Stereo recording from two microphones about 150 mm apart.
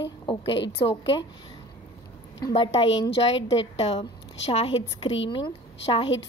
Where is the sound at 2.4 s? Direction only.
30° left (ahead or behind).